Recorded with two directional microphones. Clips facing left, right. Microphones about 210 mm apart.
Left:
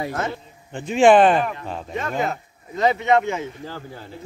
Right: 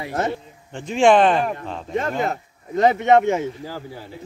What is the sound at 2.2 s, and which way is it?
Speech, 50° right (ahead or behind).